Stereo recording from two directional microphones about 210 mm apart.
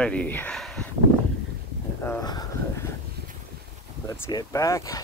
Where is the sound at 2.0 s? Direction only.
15° left (ahead or behind).